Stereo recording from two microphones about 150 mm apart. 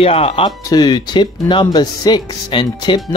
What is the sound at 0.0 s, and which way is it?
Speech, 40° left (ahead or behind).